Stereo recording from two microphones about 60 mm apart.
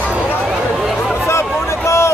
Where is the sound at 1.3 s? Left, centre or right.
Left.